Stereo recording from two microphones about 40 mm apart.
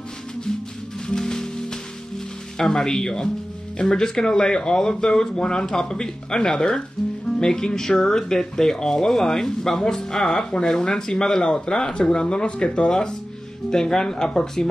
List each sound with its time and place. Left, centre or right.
1.0 s music: centre
2.5 s speech: centre